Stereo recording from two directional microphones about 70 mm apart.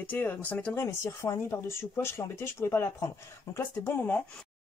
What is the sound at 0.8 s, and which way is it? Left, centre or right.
Speech, left.